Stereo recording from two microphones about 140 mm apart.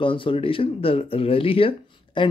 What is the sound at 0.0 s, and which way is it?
Speech, 40° left (ahead or behind).